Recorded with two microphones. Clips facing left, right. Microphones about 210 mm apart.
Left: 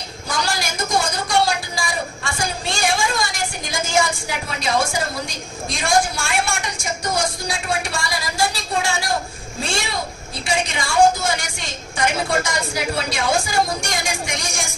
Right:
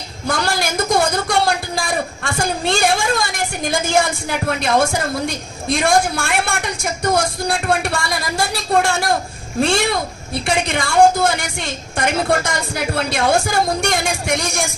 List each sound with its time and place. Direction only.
0.3 s a woman's voice: 60° right (ahead or behind)
4.5 s a woman's voice: 55° right (ahead or behind)